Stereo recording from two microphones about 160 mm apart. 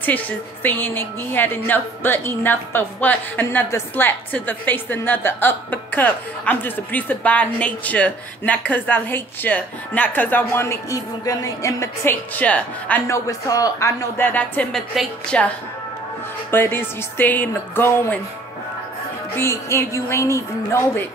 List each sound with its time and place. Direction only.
0.0 s a woman's voice: 10° left (ahead or behind)
19.3 s a woman's voice: 15° left (ahead or behind)